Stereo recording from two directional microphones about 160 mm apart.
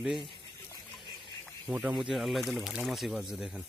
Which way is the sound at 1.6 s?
5° right (ahead or behind).